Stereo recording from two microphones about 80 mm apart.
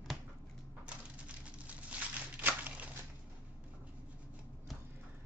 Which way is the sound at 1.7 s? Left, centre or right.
Centre.